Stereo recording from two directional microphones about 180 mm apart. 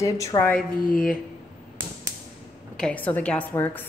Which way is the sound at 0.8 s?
50° left (ahead or behind).